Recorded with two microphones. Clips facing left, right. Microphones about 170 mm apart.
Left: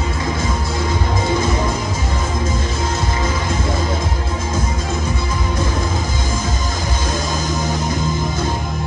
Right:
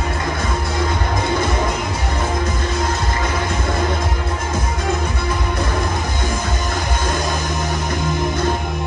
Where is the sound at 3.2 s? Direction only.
60° right (ahead or behind).